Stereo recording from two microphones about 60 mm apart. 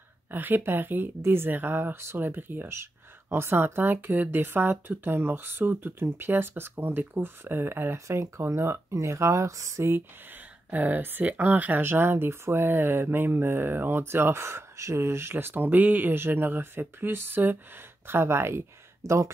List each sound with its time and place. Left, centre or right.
0.3 s speech: right
2.7 s speech: right
8.2 s speech: right
8.9 s speech: right
10.7 s speech: right
19.0 s speech: right